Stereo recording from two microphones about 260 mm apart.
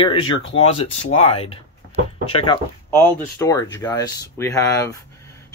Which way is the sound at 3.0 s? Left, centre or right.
Centre.